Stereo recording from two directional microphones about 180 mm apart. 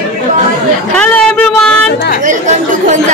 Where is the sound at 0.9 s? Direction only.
5° left (ahead or behind).